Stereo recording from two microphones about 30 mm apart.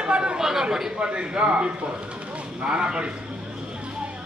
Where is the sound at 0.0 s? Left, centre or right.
Right.